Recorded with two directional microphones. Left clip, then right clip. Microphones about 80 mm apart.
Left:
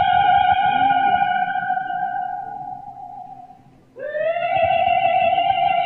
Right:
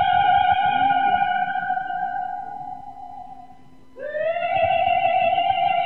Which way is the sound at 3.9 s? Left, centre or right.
Right.